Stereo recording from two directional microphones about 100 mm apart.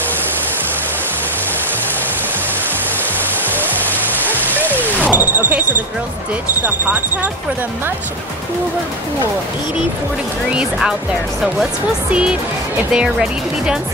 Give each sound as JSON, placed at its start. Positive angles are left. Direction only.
{"t": 4.9, "sound": "a sound", "side_deg": -15}
{"t": 10.5, "sound": "speech", "side_deg": -10}
{"t": 12.1, "sound": "speech", "side_deg": -10}